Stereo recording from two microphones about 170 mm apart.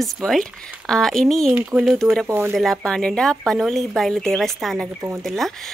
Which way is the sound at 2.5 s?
5° left (ahead or behind).